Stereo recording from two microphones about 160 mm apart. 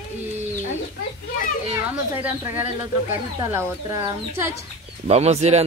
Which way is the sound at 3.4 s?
20° right (ahead or behind).